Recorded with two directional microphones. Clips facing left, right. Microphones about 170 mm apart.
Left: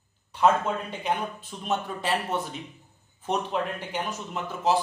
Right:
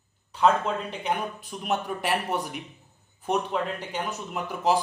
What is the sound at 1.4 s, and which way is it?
Speech, 15° right (ahead or behind).